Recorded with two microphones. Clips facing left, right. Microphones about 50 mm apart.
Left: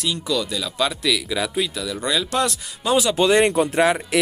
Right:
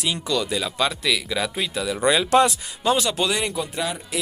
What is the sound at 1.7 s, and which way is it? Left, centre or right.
Speech, centre.